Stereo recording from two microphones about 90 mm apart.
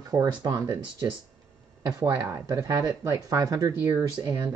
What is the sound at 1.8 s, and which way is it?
Speech, 45° right (ahead or behind).